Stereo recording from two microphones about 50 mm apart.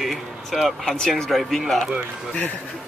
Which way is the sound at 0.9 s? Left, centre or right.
Centre.